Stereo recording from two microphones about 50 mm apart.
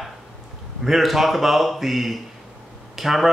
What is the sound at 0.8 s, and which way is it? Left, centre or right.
Speech, centre.